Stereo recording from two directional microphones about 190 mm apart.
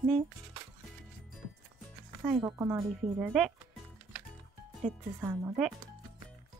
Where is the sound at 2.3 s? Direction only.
20° right (ahead or behind).